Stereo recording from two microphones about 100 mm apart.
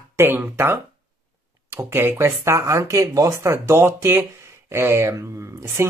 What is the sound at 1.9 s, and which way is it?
Speech, 25° right (ahead or behind).